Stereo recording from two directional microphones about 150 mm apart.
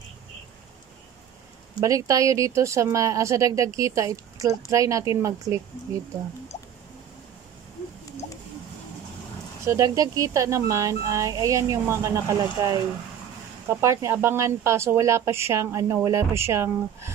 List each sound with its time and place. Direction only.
1.8 s a woman's voice: 20° right (ahead or behind)
9.7 s a woman's voice: 20° right (ahead or behind)